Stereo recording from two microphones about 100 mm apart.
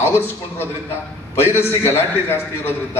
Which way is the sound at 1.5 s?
25° left (ahead or behind).